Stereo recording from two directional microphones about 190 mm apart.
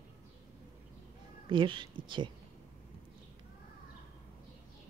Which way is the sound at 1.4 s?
25° right (ahead or behind).